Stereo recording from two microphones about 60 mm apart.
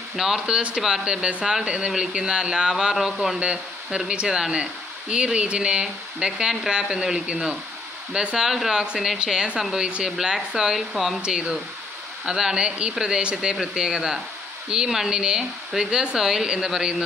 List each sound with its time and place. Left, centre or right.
0.1 s speech: centre